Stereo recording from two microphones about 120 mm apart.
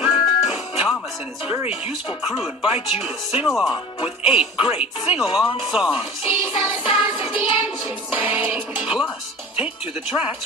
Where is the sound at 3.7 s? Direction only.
45° left (ahead or behind).